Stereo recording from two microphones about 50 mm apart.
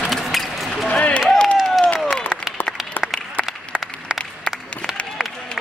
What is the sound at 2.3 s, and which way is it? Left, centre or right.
Applause, right.